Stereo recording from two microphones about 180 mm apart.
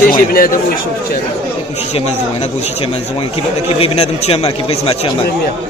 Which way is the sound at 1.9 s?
35° left (ahead or behind).